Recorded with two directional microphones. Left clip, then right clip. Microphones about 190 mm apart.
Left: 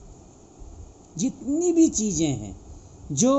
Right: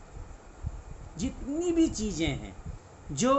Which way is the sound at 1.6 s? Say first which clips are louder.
Left 7 dB; 35° left (ahead or behind).